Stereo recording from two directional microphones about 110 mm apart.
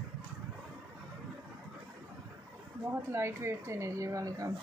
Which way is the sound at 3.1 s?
25° right (ahead or behind).